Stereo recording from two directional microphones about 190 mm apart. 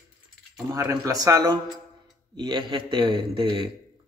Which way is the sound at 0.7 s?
15° right (ahead or behind).